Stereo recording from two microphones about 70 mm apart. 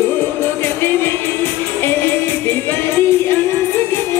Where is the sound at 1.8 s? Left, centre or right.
Left.